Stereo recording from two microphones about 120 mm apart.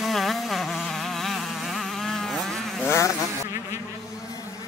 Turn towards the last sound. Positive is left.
turn(degrees=25)  # may be behind; listen again after turning